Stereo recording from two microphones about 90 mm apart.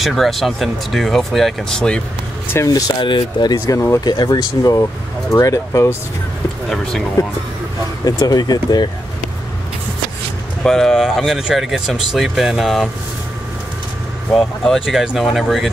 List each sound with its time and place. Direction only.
0.0 s speech: centre (ahead or behind)
2.5 s speech: 40° left (ahead or behind)
3.0 s speech: 60° left (ahead or behind); by 5.9 s 35° left (ahead or behind)
6.7 s speech: 5° left (ahead or behind)
8.0 s speech: 45° left (ahead or behind)
10.6 s speech: 5° left (ahead or behind)
14.3 s speech: 5° left (ahead or behind)